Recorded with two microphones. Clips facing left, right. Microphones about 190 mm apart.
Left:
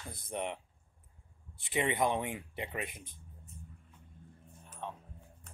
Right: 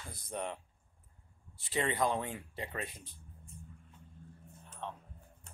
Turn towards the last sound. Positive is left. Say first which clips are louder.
# left 1 dB
turn(degrees=10)  # may be behind; listen again after turning